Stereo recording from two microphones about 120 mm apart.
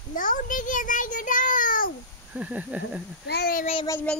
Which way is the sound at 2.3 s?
10° right (ahead or behind).